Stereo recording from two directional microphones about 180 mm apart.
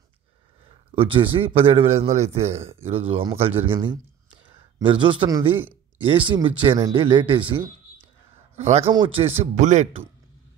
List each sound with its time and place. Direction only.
0.7 s a man's voice: 30° right (ahead or behind)
5.6 s a sound: 10° right (ahead or behind)
6.0 s a man's voice: 30° right (ahead or behind)
9.4 s a man's voice: 40° right (ahead or behind)